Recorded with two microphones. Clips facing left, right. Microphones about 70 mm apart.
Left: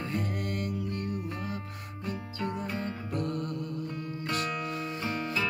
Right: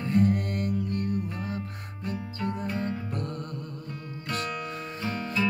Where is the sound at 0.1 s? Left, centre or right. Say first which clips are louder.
Right 12 dB; right.